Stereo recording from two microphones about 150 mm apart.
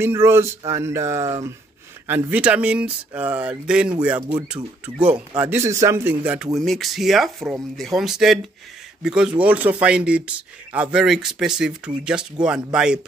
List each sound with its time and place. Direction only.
0.0 s speech: 15° right (ahead or behind)
5.1 s speech: 25° right (ahead or behind); by 6.5 s 10° right (ahead or behind)
6.6 s speech: centre (ahead or behind)